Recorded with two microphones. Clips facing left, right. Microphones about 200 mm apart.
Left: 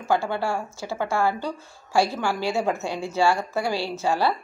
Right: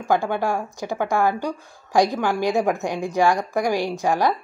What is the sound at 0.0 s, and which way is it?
Speech, 15° right (ahead or behind).